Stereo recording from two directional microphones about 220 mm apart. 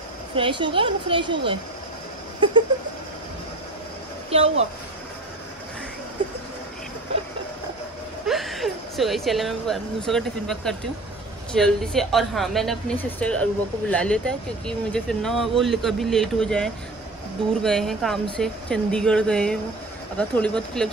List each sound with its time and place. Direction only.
0.4 s speech: 20° right (ahead or behind)
4.3 s speech: 30° right (ahead or behind)
8.3 s speech: centre (ahead or behind)